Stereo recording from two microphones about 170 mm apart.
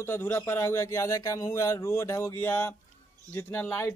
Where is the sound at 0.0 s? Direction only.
15° left (ahead or behind).